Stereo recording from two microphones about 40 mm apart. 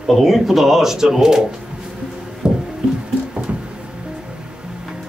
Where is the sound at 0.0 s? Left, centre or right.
Centre.